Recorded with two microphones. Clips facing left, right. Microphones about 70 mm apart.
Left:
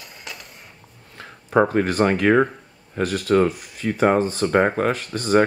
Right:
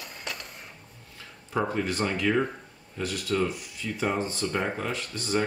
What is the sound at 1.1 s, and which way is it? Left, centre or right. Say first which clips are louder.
Speech: left 11 dB; left.